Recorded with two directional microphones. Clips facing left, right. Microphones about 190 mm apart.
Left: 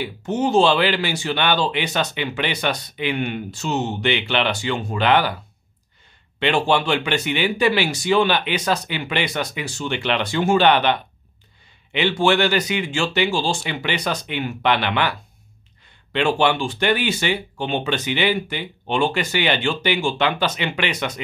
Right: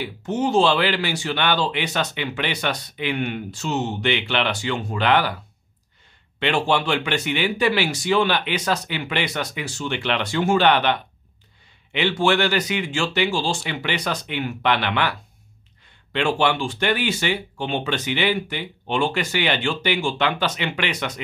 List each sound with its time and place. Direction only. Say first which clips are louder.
0.0 s speech: left 1 dB; 20° left (ahead or behind)
6.4 s speech: left 2 dB; 20° left (ahead or behind)